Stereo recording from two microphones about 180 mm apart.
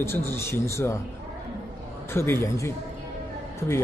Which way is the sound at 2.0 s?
15° left (ahead or behind).